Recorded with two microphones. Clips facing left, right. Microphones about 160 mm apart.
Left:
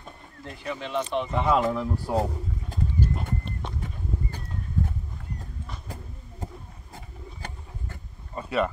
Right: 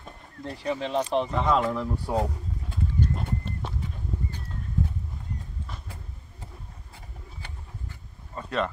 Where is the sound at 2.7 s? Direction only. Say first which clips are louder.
Left 1 dB; 40° left (ahead or behind).